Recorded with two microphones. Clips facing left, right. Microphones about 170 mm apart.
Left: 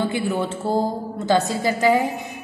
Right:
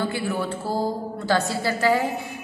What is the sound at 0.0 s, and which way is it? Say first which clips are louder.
A woman's voice: left 3 dB; 20° left (ahead or behind).